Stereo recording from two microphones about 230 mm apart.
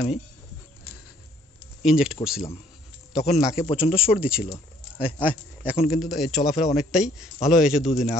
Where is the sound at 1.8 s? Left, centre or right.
Centre.